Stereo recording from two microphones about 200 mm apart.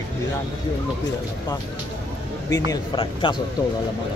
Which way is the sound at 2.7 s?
25° left (ahead or behind).